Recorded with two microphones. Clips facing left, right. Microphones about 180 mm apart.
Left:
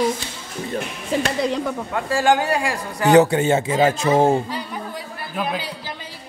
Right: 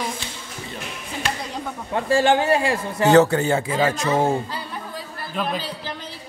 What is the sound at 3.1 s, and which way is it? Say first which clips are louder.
Speech: left 2 dB; 15° left (ahead or behind).